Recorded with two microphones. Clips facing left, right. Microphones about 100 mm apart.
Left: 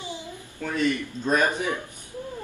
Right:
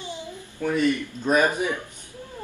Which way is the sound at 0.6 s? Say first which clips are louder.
Right 3 dB; 15° right (ahead or behind).